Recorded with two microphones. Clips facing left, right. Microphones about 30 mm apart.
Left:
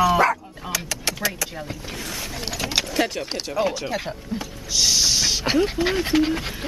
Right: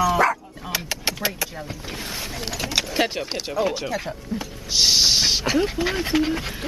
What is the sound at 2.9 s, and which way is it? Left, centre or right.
Speech, right.